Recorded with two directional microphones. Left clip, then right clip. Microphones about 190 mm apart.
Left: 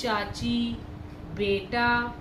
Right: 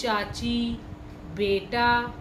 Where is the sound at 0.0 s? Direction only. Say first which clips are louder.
Right 1 dB; 55° right (ahead or behind).